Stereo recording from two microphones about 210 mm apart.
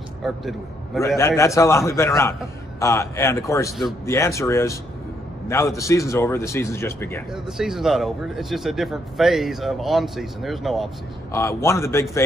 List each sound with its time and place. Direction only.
0.2 s a man's voice: centre (ahead or behind)
1.0 s speech: 15° left (ahead or behind)
7.4 s speech: centre (ahead or behind)
11.3 s speech: 15° left (ahead or behind)